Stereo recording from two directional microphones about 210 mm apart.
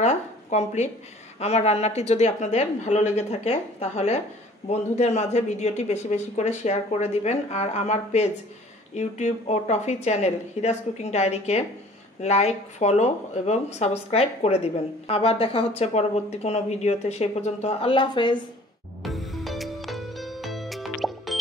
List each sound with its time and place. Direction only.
0.0 s speech: 35° left (ahead or behind)
19.0 s music: centre (ahead or behind)